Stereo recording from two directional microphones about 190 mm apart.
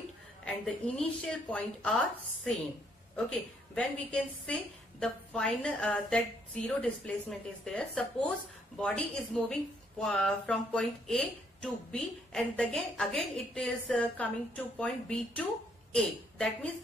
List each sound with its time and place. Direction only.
0.7 s a woman's voice: 5° left (ahead or behind)
3.2 s a woman's voice: 5° left (ahead or behind)